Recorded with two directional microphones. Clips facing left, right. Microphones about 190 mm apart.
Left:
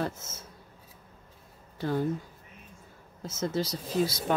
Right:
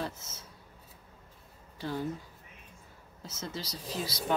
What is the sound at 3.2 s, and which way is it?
Speech, 50° left (ahead or behind).